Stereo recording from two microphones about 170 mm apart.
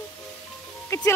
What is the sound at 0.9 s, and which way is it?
Music, 20° left (ahead or behind).